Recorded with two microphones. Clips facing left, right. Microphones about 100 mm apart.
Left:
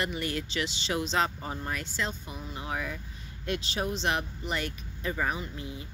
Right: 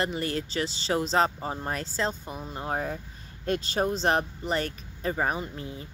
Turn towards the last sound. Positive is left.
turn(degrees=-35)  # may be behind; listen again after turning